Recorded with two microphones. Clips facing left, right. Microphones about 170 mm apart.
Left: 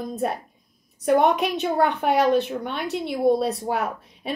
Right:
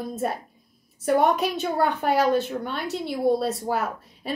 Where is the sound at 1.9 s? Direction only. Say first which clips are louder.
Left 2 dB; centre (ahead or behind).